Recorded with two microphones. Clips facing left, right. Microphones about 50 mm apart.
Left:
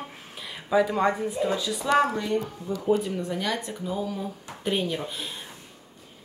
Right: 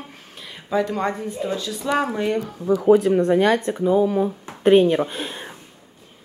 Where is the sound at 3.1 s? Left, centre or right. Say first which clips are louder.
Right 12 dB; right.